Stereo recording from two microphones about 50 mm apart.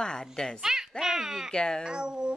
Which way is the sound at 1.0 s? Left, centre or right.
Centre.